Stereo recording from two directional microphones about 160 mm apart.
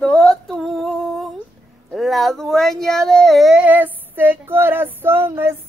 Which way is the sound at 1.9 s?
Centre (ahead or behind).